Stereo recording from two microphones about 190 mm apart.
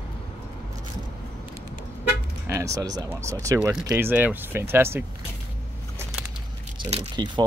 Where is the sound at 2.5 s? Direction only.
15° right (ahead or behind).